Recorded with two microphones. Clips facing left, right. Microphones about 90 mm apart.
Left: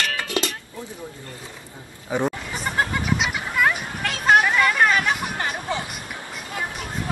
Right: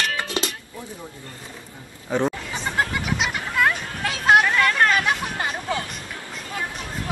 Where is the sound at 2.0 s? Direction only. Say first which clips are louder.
Right 1 dB; 10° left (ahead or behind).